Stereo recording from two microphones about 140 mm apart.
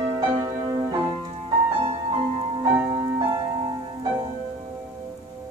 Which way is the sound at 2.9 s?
35° right (ahead or behind).